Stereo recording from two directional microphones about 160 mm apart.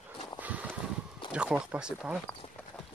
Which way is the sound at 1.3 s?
5° right (ahead or behind).